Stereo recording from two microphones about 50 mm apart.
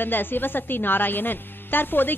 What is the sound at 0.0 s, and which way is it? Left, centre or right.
A woman's voice, left.